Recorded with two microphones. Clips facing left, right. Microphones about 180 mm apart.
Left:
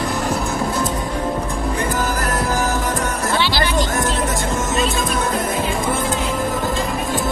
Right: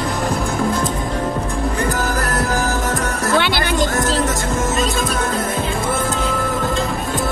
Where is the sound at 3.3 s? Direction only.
55° right (ahead or behind).